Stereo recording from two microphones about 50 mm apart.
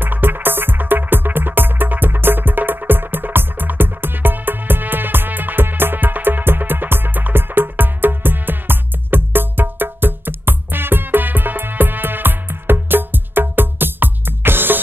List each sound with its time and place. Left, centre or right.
0.0 s music: right